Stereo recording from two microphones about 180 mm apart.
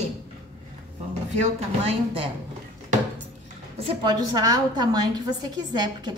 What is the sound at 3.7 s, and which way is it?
A woman's voice, 30° right (ahead or behind).